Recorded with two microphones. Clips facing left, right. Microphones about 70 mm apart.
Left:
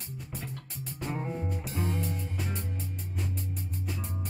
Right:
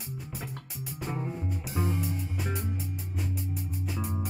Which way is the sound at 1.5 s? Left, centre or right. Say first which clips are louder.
Right 1 dB; centre.